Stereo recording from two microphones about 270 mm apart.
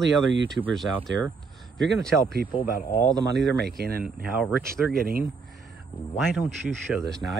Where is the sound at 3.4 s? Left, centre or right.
Right.